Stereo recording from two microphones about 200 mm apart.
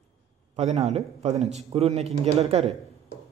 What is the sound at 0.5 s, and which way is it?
Speech, 35° right (ahead or behind).